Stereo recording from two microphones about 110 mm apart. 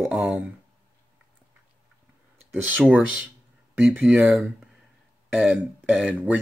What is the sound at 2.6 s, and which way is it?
Speech, 15° right (ahead or behind).